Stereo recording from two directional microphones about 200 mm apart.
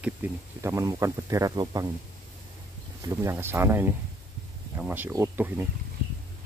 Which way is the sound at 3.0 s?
15° right (ahead or behind).